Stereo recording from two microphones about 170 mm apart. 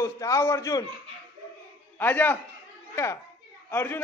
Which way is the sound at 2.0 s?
10° left (ahead or behind).